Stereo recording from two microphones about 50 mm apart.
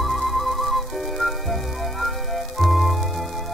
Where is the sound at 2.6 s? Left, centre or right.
Centre.